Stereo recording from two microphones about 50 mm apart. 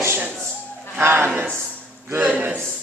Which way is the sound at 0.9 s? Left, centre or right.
Right.